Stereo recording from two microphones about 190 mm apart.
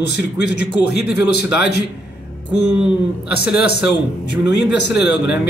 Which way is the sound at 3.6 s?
60° left (ahead or behind).